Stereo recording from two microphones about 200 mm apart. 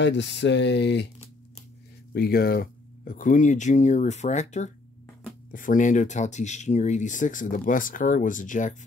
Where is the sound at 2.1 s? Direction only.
50° left (ahead or behind).